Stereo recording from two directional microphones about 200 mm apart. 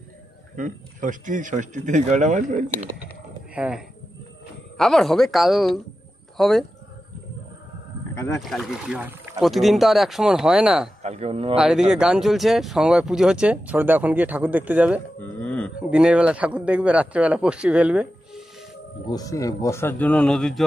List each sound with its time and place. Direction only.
0.6 s speech: 40° right (ahead or behind)
3.5 s speech: 5° right (ahead or behind)
8.1 s wild animals: 15° left (ahead or behind)
8.4 s speech: centre (ahead or behind)
11.0 s speech: 30° right (ahead or behind)
11.5 s speech: 5° right (ahead or behind)
15.1 s a sound: 5° left (ahead or behind)
15.9 s speech: 5° right (ahead or behind)
19.0 s speech: 20° left (ahead or behind)